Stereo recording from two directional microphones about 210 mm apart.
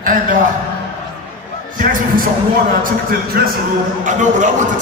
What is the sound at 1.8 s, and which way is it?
A man's voice, 40° right (ahead or behind).